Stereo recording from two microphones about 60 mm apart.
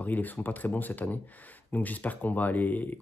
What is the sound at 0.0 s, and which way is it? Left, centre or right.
Speech, left.